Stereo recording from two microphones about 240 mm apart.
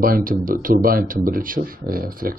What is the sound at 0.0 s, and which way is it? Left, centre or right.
Speech, right.